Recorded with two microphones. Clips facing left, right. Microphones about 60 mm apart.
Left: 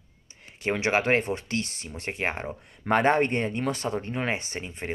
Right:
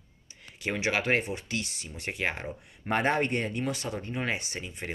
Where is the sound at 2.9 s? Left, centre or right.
Left.